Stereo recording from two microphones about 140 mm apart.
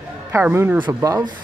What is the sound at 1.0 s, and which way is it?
Speech, 25° right (ahead or behind).